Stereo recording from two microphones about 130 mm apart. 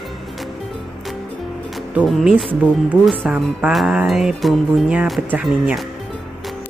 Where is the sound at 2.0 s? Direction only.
Centre (ahead or behind).